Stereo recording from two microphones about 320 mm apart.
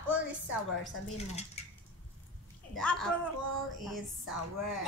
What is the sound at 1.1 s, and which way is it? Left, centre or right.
Speech, centre.